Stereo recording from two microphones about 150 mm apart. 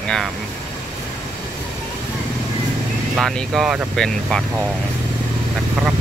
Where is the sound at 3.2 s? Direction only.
Centre (ahead or behind).